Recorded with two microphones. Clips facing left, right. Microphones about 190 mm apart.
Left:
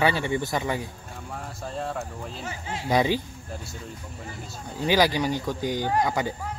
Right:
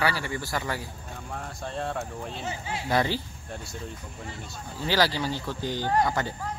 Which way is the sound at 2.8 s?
15° left (ahead or behind).